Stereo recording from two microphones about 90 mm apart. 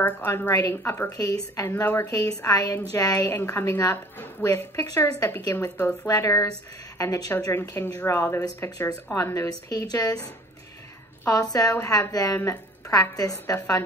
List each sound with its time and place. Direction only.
0.0 s a woman's voice: 25° left (ahead or behind)
1.1 s a woman's voice: 45° left (ahead or behind)
3.3 s a woman's voice: 30° left (ahead or behind)
4.8 s speech: 40° left (ahead or behind)
11.2 s a woman's voice: 45° left (ahead or behind)